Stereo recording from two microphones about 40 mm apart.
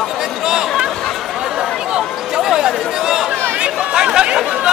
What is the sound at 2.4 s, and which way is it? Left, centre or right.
Chatter, centre.